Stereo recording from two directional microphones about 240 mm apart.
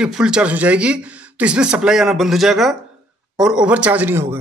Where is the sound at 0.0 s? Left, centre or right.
Centre.